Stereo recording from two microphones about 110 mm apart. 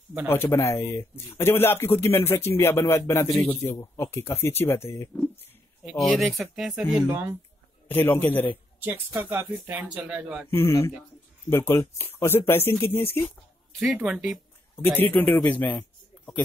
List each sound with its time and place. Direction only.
0.3 s speech: 25° left (ahead or behind)
5.9 s speech: centre (ahead or behind)
7.1 s speech: 20° right (ahead or behind)
7.9 s speech: 15° left (ahead or behind)
8.7 s a sound: 20° right (ahead or behind)
9.3 s speech: 15° right (ahead or behind)
10.5 s speech: 25° left (ahead or behind)
13.7 s speech: 5° right (ahead or behind)
14.8 s speech: 20° left (ahead or behind)